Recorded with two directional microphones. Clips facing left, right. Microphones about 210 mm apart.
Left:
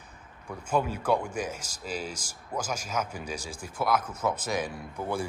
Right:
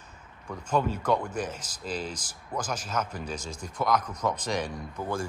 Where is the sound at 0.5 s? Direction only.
10° left (ahead or behind).